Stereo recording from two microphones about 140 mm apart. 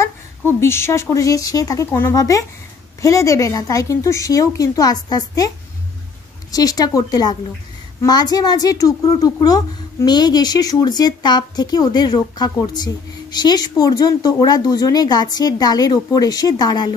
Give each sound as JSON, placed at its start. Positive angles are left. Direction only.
{"t": 0.0, "sound": "a sound", "side_deg": 20}
{"t": 1.1, "sound": "a woman's voice", "side_deg": 25}
{"t": 6.5, "sound": "a woman's voice", "side_deg": 25}